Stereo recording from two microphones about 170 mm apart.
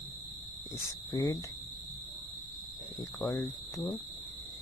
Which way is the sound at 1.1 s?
25° left (ahead or behind).